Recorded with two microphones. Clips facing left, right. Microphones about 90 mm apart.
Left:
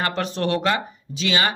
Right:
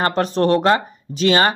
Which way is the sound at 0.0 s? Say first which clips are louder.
Right 6 dB; 40° right (ahead or behind).